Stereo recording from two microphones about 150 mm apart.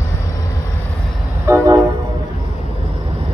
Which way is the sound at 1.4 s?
15° right (ahead or behind).